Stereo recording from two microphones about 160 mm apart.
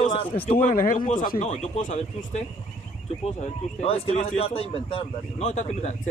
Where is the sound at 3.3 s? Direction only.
40° left (ahead or behind).